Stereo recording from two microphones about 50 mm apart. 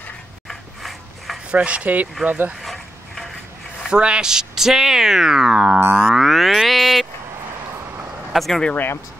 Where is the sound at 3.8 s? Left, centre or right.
Centre.